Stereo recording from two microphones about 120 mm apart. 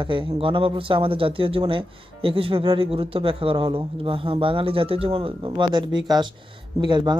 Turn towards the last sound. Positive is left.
turn(degrees=-40)  # may be behind; listen again after turning